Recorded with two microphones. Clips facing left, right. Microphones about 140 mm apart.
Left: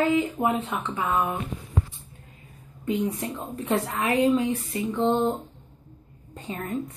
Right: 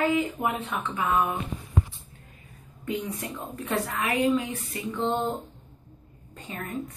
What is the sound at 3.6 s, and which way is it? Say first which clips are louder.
A woman's voice: left 3 dB; 25° left (ahead or behind).